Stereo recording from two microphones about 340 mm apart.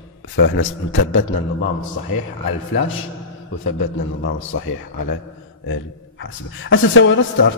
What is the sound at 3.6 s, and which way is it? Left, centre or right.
Speech, left.